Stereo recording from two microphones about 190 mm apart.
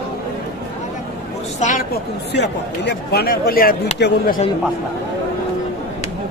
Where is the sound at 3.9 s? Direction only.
65° left (ahead or behind).